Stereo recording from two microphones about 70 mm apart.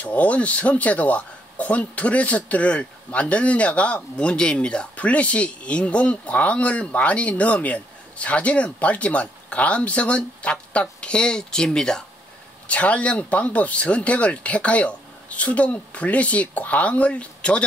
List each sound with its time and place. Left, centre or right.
0.0 s speech: centre